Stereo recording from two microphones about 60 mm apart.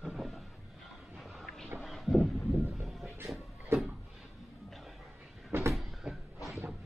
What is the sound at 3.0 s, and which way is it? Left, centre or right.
Music, right.